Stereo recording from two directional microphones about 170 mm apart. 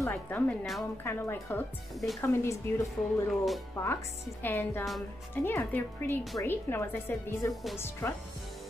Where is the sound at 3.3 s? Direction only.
Centre (ahead or behind).